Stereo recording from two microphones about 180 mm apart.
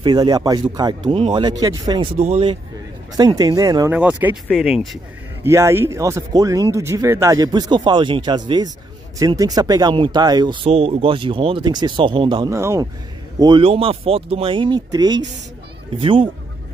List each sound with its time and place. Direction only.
0.0 s speech: 20° right (ahead or behind)
2.1 s a man's voice: 35° right (ahead or behind)
3.2 s speech: 20° right (ahead or behind)
12.5 s speech: 15° right (ahead or behind)
13.4 s speech: 30° right (ahead or behind)